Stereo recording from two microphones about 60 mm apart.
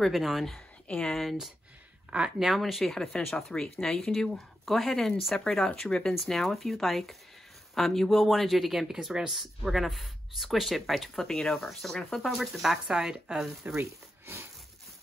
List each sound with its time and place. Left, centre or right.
0.1 s speech: centre
0.8 s speech: centre
1.1 s speech: centre
2.0 s speech: centre
12.4 s speech: centre
13.7 s speech: right